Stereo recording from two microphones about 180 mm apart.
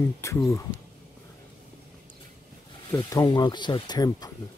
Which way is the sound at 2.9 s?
20° left (ahead or behind).